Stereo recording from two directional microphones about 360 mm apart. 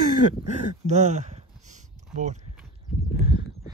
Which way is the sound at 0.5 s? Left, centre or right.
Centre.